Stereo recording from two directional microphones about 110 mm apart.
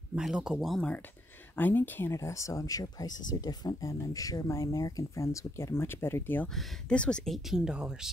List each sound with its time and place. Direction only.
0.1 s speech: 5° right (ahead or behind)
1.6 s speech: 20° left (ahead or behind); by 8.1 s 5° right (ahead or behind)